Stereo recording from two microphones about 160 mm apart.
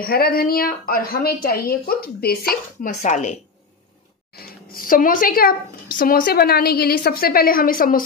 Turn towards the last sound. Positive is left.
turn(degrees=60)  # may be behind; listen again after turning